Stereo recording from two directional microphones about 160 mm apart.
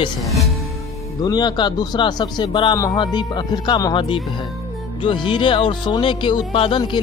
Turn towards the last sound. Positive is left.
turn(degrees=30)  # may be behind; listen again after turning